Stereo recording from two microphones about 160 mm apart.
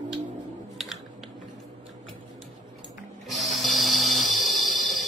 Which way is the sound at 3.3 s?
Centre (ahead or behind).